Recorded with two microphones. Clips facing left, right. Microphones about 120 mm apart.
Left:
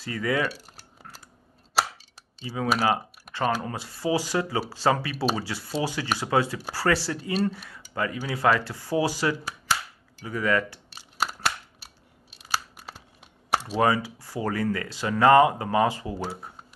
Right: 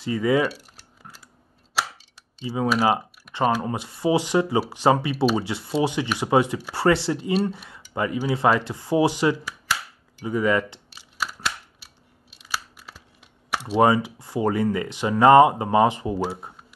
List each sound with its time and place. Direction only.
0.0 s speech: 20° right (ahead or behind)
2.4 s speech: 25° right (ahead or behind)
11.0 s a sound: 40° left (ahead or behind)
13.7 s speech: 20° right (ahead or behind)